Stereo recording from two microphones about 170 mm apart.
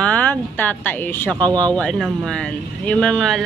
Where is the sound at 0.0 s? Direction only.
10° left (ahead or behind).